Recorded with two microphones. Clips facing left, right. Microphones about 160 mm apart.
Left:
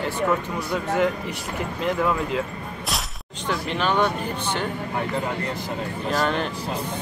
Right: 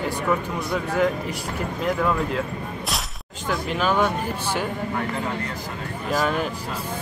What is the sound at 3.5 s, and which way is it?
Speech, 5° right (ahead or behind).